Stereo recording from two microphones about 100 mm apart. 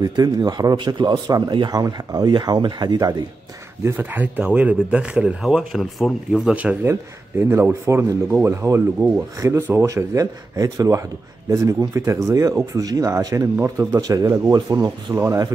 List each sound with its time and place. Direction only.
0.0 s speech: 40° right (ahead or behind)
3.8 s a man's voice: 20° right (ahead or behind)